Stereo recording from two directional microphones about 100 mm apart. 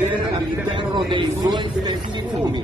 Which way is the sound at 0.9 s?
50° right (ahead or behind).